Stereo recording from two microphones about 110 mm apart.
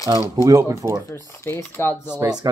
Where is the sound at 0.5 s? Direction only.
30° right (ahead or behind).